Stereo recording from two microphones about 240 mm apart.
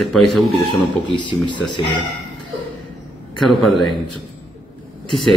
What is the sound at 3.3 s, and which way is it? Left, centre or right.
Speech, centre.